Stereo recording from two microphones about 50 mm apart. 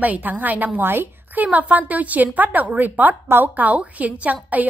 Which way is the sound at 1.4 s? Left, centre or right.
Right.